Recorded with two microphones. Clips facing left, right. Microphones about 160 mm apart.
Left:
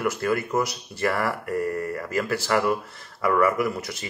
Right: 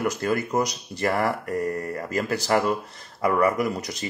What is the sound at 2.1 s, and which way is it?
Speech, 20° right (ahead or behind).